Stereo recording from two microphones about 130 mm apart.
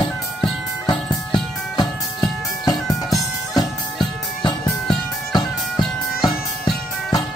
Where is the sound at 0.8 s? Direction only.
35° left (ahead or behind).